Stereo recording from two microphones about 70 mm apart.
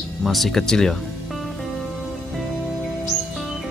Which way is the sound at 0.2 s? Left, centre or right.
Centre.